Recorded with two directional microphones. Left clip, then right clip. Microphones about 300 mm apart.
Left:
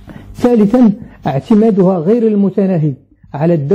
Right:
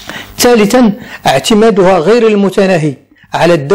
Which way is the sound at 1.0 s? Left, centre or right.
Centre.